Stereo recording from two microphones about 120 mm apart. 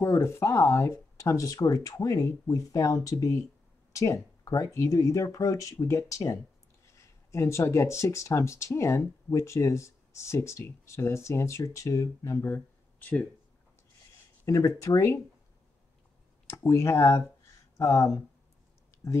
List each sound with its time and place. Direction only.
0.0 s speech: 20° left (ahead or behind)
14.4 s speech: 25° left (ahead or behind)
16.4 s speech: 25° left (ahead or behind)